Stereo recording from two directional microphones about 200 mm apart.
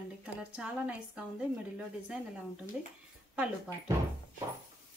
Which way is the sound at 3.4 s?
15° right (ahead or behind).